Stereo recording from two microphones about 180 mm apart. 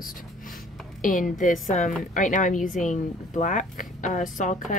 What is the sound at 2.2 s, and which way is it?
Speech, 45° left (ahead or behind).